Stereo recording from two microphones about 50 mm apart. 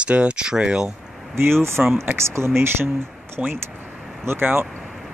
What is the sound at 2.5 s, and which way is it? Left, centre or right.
Speech, right.